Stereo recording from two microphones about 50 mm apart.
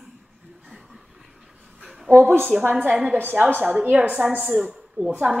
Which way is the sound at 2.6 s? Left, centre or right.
Right.